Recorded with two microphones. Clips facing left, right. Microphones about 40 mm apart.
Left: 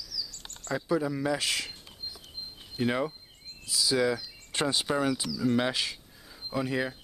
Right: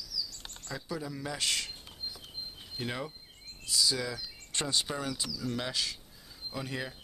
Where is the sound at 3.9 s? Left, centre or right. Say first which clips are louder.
Left 9 dB; left.